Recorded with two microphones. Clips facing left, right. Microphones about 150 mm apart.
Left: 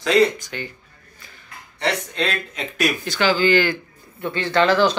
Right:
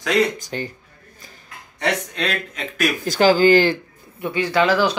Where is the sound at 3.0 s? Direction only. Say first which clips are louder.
Right 7 dB; 40° right (ahead or behind).